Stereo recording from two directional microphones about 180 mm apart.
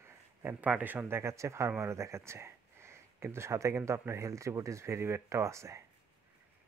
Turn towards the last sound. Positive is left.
turn(degrees=-15)  # may be behind; listen again after turning